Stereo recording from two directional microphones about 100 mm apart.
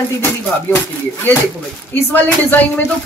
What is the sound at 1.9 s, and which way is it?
Speech, 15° left (ahead or behind).